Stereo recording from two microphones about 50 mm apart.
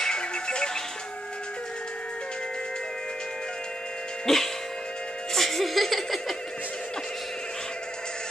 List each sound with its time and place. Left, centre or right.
0.0 s music: centre
4.3 s music: centre